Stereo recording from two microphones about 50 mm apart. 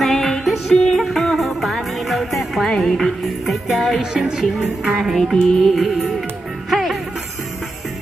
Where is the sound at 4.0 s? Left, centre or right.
Centre.